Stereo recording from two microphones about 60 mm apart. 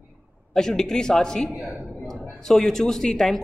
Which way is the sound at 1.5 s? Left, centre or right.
Right.